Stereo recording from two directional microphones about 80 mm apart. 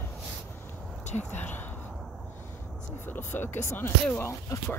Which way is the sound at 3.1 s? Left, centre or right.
Left.